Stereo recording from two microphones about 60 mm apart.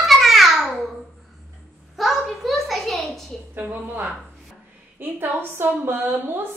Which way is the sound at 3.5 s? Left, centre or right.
Right.